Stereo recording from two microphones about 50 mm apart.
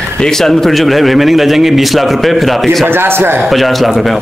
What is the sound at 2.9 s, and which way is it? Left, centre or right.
Speech, right.